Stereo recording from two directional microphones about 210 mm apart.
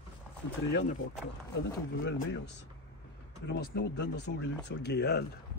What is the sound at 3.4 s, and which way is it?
Speech, 50° left (ahead or behind).